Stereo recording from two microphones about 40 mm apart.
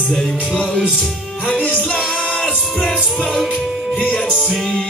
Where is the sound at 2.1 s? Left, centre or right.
Left.